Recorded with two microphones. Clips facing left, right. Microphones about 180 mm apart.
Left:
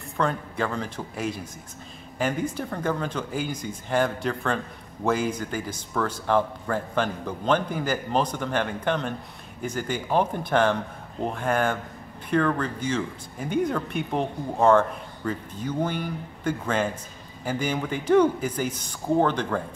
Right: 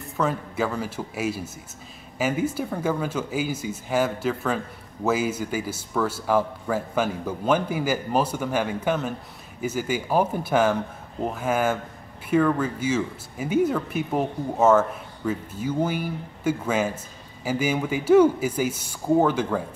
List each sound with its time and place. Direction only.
0.2 s speech: 5° right (ahead or behind)